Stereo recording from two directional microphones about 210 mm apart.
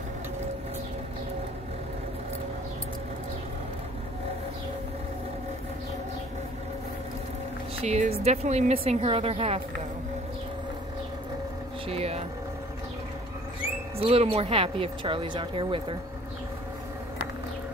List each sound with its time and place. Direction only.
7.8 s speech: 30° right (ahead or behind)
11.9 s speech: 30° right (ahead or behind)
13.9 s speech: 30° right (ahead or behind)